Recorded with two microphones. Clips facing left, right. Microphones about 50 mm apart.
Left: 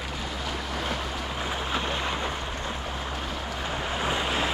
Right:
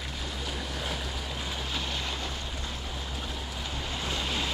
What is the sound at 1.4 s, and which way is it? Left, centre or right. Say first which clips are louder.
Boat: left 7 dB; left.